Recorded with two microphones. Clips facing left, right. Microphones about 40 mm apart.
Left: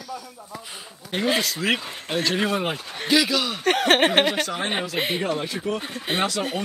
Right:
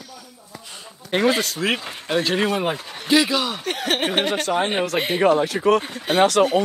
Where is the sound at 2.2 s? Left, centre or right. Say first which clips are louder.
Right 2 dB; right.